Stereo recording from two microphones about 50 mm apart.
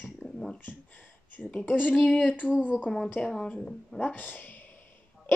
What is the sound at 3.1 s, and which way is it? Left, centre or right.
Speech, centre.